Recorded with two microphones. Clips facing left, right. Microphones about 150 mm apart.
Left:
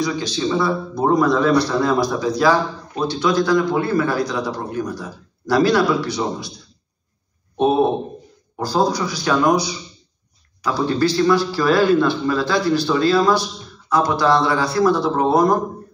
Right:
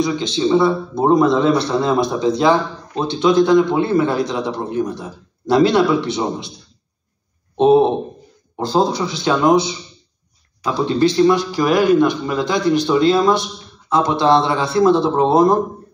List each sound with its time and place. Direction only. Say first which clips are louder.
0.0 s a man's voice: right 3 dB; 20° right (ahead or behind)
7.5 s a man's voice: right 4 dB; 25° right (ahead or behind)